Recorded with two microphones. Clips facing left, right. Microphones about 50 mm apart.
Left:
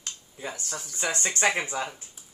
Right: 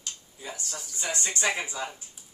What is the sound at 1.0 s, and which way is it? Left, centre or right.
Speech, left.